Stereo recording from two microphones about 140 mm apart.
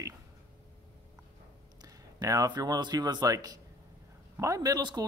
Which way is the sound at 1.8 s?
25° right (ahead or behind).